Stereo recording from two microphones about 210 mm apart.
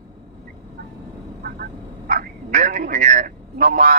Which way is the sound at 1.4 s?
45° right (ahead or behind).